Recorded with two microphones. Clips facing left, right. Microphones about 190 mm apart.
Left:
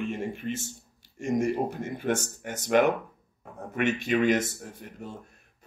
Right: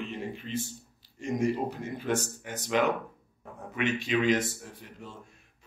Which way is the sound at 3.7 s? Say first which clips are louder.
Left 3 dB; 50° left (ahead or behind).